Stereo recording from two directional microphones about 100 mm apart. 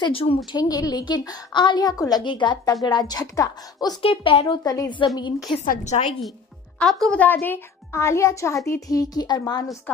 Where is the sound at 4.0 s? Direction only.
65° left (ahead or behind).